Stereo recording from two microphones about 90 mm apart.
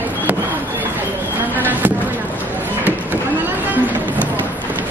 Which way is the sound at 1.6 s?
20° right (ahead or behind).